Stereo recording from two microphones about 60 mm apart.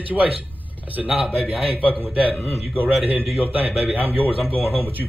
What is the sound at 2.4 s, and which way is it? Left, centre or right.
Speech, left.